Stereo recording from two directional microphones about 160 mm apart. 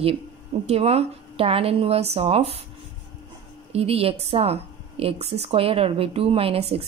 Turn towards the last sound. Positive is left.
turn(degrees=-35)  # may be behind; listen again after turning